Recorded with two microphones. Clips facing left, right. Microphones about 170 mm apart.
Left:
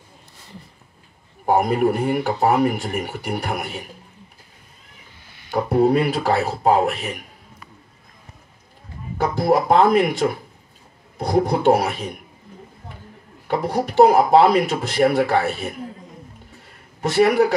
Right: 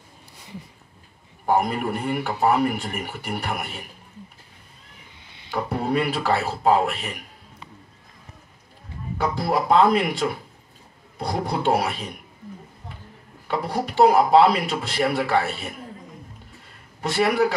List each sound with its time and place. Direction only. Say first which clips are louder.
1.4 s speech: left 5 dB; 45° left (ahead or behind)
5.5 s speech: left 7 dB; 40° left (ahead or behind)
9.2 s speech: left 5 dB; 45° left (ahead or behind)
13.5 s speech: left 4 dB; 45° left (ahead or behind)
17.1 s speech: left 5 dB; 45° left (ahead or behind)